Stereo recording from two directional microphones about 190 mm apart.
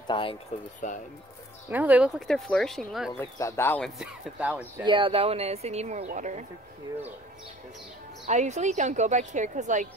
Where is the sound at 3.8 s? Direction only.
Centre (ahead or behind).